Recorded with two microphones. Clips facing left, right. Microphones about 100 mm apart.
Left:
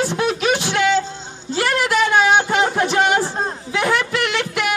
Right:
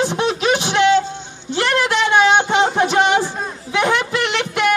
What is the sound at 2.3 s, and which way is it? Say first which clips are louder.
Speech: right 2 dB; 25° right (ahead or behind).